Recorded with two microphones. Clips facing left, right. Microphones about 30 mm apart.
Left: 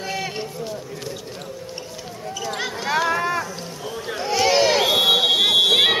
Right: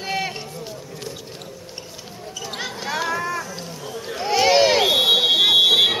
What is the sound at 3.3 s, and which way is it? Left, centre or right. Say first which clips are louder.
Run: left 2 dB; centre.